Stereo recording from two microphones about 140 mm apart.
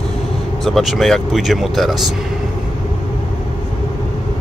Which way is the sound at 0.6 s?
Centre (ahead or behind).